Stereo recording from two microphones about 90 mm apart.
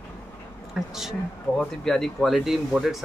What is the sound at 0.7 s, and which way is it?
Speech, 5° right (ahead or behind).